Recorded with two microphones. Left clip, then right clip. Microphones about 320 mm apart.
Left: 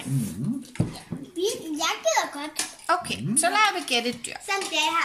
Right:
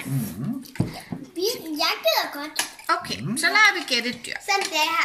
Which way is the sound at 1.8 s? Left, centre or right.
Centre.